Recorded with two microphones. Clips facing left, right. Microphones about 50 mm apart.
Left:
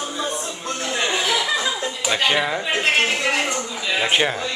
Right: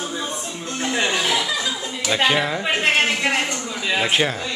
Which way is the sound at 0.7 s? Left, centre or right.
Centre.